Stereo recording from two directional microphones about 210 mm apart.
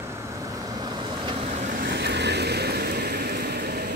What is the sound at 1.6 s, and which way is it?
Vehicle, 40° right (ahead or behind).